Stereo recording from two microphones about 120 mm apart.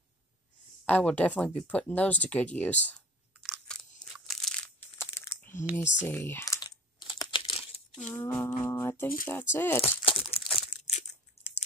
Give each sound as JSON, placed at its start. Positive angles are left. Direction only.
{"t": 0.8, "sound": "speech", "side_deg": 10}
{"t": 3.6, "sound": "crunch", "side_deg": 5}
{"t": 4.1, "sound": "crushing", "side_deg": 0}
{"t": 5.1, "sound": "a sound", "side_deg": 20}
{"t": 5.8, "sound": "typing", "side_deg": 20}
{"t": 8.2, "sound": "speech", "side_deg": 20}
{"t": 10.0, "sound": "crumpling", "side_deg": 45}
{"t": 10.7, "sound": "crushing", "side_deg": 80}